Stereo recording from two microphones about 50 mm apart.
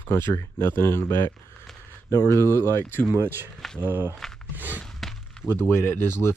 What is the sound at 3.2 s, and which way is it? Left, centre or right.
Speech, right.